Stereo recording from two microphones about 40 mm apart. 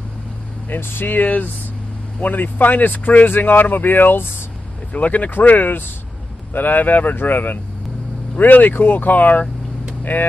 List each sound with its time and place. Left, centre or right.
0.7 s speech: left
4.9 s speech: left